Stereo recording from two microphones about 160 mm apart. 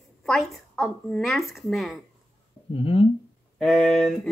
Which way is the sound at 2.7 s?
35° left (ahead or behind).